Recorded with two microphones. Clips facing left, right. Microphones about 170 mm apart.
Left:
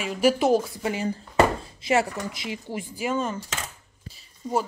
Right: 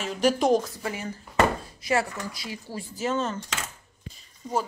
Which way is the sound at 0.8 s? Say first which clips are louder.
Left 5 dB; 25° left (ahead or behind).